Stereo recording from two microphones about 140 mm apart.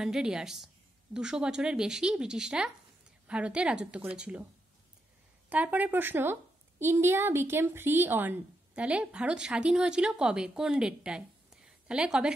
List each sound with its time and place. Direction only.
0.0 s speech: 5° right (ahead or behind)
5.5 s speech: 10° right (ahead or behind)